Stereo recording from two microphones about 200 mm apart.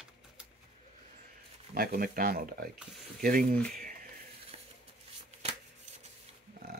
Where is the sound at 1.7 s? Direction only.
50° right (ahead or behind).